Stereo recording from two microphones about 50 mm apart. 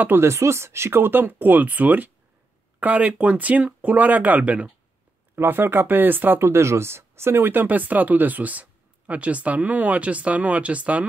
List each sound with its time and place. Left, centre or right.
0.2 s speech: right
5.3 s speech: right
6.5 s speech: right
7.6 s speech: right